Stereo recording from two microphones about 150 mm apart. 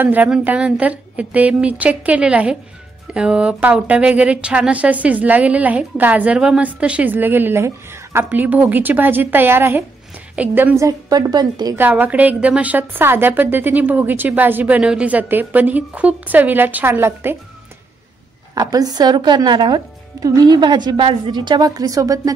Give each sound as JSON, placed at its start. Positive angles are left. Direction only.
{"t": 0.0, "sound": "speech", "side_deg": -10}
{"t": 11.7, "sound": "speech", "side_deg": -10}
{"t": 18.5, "sound": "speech", "side_deg": -25}